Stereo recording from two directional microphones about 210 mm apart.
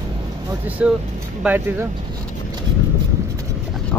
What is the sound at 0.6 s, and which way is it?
Speech, 5° right (ahead or behind).